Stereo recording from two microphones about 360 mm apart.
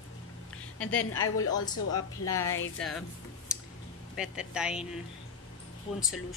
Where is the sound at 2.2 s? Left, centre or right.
Centre.